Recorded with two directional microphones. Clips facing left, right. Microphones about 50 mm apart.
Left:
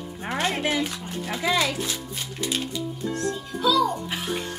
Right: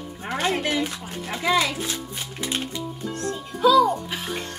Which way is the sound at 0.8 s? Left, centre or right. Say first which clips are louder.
Even; centre.